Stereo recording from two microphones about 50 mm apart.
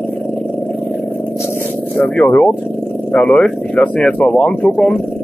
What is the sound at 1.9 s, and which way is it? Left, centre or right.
Speech, left.